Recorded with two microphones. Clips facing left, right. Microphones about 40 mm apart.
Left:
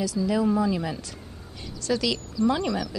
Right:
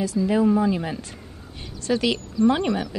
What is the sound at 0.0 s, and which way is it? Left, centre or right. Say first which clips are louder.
A woman's voice: right 4 dB; right.